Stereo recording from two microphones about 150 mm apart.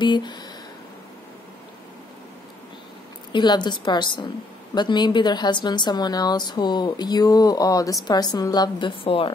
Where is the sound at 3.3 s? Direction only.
30° left (ahead or behind).